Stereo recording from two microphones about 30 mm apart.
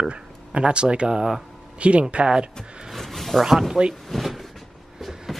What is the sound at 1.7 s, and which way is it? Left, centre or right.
Speech, right.